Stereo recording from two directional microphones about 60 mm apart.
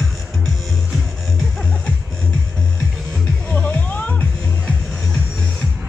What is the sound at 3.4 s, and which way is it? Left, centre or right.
Music, left.